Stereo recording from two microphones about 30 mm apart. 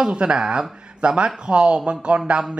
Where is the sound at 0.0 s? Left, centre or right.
Right.